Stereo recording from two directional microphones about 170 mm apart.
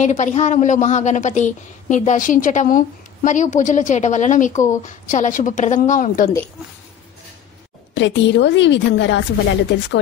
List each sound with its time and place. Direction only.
0.0 s a woman's voice: 45° left (ahead or behind)
7.9 s a woman's voice: 90° left